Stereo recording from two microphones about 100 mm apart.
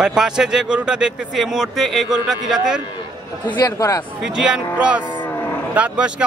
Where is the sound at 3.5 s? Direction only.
45° left (ahead or behind).